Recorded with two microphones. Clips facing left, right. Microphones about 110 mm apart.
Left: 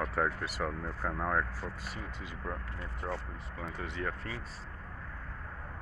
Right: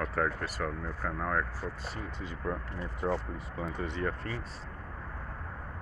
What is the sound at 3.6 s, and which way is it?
Speech, 5° left (ahead or behind).